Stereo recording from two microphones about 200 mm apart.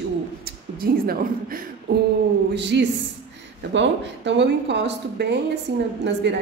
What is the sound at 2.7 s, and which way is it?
Speech, 60° right (ahead or behind).